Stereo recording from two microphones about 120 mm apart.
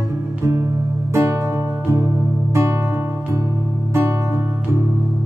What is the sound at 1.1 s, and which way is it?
Music, 25° right (ahead or behind).